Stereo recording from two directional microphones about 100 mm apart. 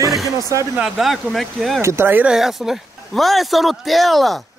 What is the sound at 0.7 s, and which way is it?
Speech, 5° right (ahead or behind).